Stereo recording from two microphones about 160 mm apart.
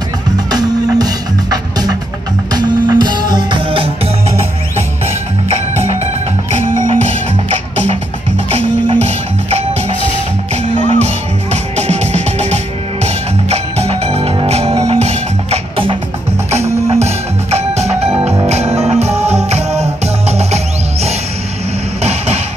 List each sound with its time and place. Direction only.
0.5 s music: 25° right (ahead or behind)
6.9 s music: 40° right (ahead or behind)